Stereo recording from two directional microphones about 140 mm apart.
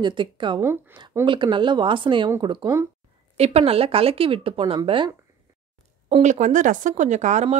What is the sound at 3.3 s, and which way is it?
Speech, 50° right (ahead or behind).